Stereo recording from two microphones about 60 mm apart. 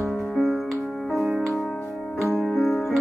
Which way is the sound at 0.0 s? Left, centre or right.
Centre.